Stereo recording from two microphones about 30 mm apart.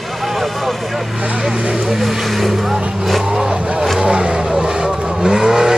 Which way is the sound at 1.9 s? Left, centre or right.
Centre.